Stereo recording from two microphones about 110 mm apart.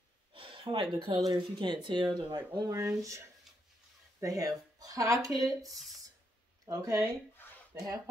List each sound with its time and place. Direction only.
0.3 s speech: 50° right (ahead or behind); by 7.1 s 30° right (ahead or behind)